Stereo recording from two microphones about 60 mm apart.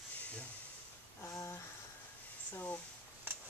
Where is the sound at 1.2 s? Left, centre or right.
Left.